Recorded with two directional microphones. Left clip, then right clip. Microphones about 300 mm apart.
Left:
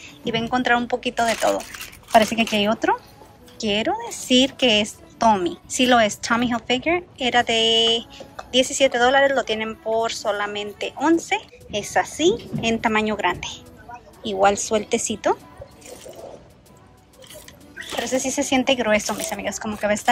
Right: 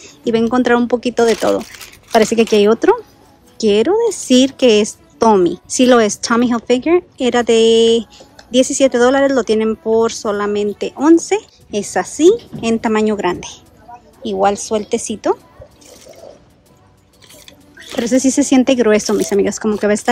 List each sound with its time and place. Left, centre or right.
0.2 s a woman's voice: centre
18.0 s speech: right